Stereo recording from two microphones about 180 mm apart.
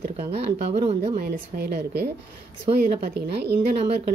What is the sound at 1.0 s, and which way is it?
Speech, 55° right (ahead or behind).